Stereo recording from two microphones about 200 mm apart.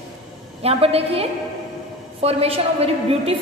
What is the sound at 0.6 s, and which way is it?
A woman's voice, 30° right (ahead or behind).